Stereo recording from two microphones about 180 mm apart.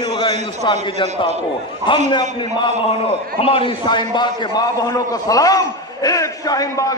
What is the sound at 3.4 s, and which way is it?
A man's voice, 30° left (ahead or behind).